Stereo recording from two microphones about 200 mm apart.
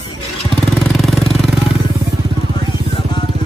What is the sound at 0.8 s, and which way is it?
Jackhammer, centre (ahead or behind).